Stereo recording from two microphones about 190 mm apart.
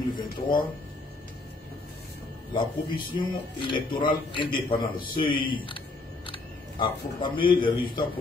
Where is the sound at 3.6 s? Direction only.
25° left (ahead or behind).